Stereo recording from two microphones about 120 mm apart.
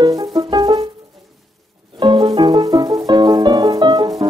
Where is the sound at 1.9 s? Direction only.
35° right (ahead or behind).